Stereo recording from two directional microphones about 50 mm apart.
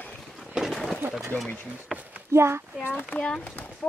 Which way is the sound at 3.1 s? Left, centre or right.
Centre.